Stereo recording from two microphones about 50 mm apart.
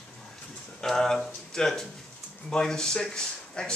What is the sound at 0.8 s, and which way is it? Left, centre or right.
Speech, centre.